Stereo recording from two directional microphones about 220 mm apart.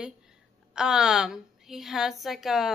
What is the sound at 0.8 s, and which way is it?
A woman's voice, 5° right (ahead or behind).